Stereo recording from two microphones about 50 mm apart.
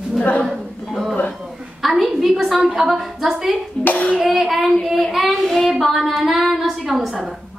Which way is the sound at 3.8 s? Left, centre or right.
Left.